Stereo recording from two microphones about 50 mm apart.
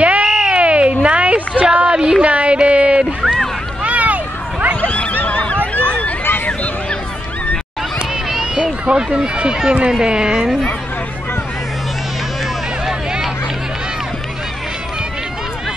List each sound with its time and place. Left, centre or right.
0.0 s a sound: right
4.8 s neigh: left
8.3 s run: centre
9.8 s speech: centre
12.8 s hubbub: centre